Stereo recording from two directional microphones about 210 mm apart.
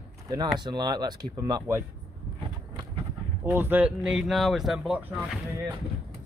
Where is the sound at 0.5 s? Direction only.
20° right (ahead or behind).